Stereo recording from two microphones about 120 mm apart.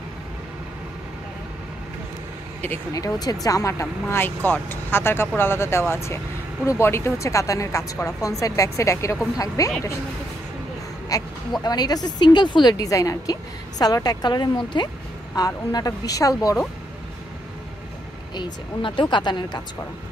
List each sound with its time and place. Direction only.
2.9 s a woman's voice: 30° left (ahead or behind)
11.1 s a woman's voice: 30° left (ahead or behind)
18.3 s a woman's voice: 40° left (ahead or behind)